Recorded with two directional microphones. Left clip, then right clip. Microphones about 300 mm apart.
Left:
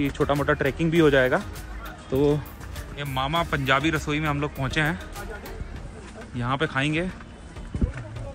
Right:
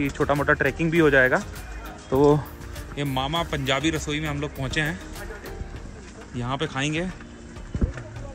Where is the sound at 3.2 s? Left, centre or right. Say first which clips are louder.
Left 3 dB; centre.